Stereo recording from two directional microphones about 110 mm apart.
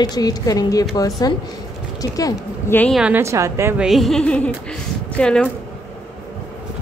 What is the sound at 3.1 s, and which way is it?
Speech, 25° right (ahead or behind).